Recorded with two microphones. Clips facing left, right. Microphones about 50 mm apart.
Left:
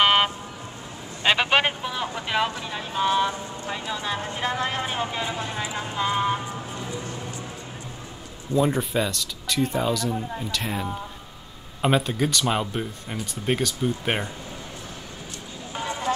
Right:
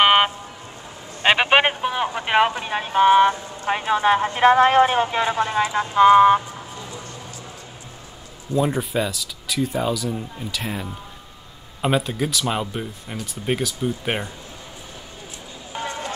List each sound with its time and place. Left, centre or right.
0.0 s vehicle: right
1.2 s speech: right
8.5 s speech: centre